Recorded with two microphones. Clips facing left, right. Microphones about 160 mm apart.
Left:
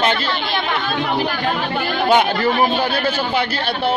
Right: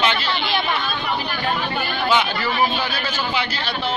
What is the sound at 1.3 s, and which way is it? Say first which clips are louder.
Speech: left 3 dB; 90° left.